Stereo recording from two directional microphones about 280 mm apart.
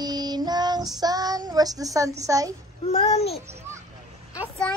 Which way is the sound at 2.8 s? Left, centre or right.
Left.